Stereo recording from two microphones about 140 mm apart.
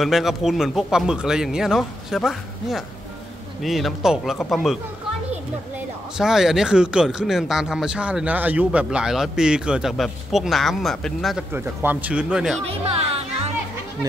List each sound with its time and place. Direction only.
0.0 s speech: centre (ahead or behind)
6.1 s speech: 5° right (ahead or behind)
11.5 s speech: 15° right (ahead or behind)
12.6 s speech: 45° right (ahead or behind)